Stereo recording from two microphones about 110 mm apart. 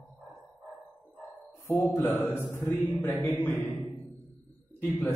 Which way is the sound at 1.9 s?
15° left (ahead or behind).